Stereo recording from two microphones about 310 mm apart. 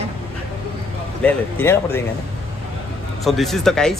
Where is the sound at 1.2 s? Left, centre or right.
Centre.